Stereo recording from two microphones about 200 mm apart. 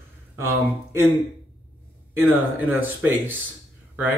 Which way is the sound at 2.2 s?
10° right (ahead or behind).